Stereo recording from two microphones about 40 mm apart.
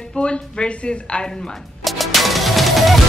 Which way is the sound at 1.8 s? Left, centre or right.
Centre.